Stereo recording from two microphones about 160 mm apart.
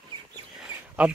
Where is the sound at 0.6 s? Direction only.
5° right (ahead or behind).